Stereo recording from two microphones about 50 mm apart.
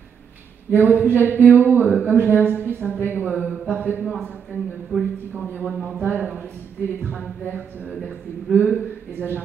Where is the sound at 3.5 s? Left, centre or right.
Right.